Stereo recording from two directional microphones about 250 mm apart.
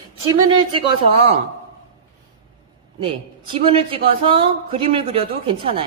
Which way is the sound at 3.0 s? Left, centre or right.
Right.